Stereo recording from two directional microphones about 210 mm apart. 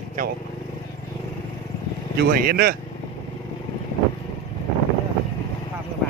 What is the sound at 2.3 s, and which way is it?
Speech, 45° right (ahead or behind).